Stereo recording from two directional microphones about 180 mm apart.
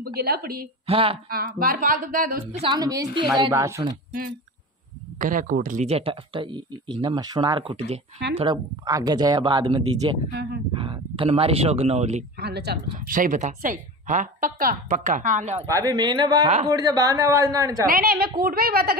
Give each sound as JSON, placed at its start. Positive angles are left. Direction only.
{"t": 0.0, "sound": "a woman's voice", "side_deg": -60}
{"t": 0.8, "sound": "speech", "side_deg": -30}
{"t": 1.3, "sound": "a woman's voice", "side_deg": -55}
{"t": 2.6, "sound": "speech", "side_deg": -20}
{"t": 5.2, "sound": "speech", "side_deg": -50}
{"t": 12.4, "sound": "a woman's voice", "side_deg": -65}
{"t": 15.6, "sound": "speech", "side_deg": -20}
{"t": 17.8, "sound": "a woman's voice", "side_deg": -55}